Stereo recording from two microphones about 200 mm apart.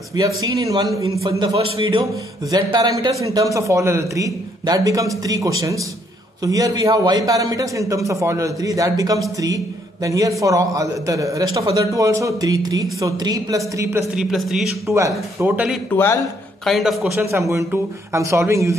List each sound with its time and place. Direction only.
0.1 s a man's voice: 20° right (ahead or behind); by 14.7 s centre (ahead or behind)
14.9 s a man's voice: 15° right (ahead or behind)
15.9 s a man's voice: 10° left (ahead or behind)
16.6 s a man's voice: centre (ahead or behind)
17.1 s a man's voice: 15° right (ahead or behind)